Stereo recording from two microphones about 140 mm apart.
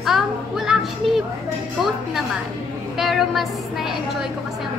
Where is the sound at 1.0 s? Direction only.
Centre (ahead or behind).